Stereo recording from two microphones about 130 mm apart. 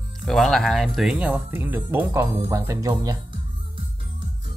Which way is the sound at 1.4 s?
15° right (ahead or behind).